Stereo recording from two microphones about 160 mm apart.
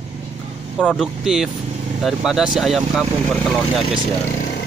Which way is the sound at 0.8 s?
5° right (ahead or behind).